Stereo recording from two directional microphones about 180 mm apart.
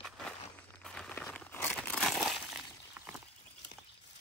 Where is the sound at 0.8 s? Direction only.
5° left (ahead or behind).